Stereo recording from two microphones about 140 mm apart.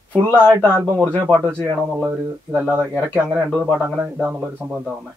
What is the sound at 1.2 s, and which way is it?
Speech, 15° right (ahead or behind).